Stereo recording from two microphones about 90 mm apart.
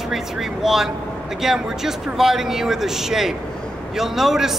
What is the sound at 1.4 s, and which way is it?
Speech, 5° right (ahead or behind).